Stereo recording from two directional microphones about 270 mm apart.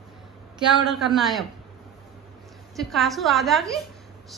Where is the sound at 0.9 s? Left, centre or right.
Centre.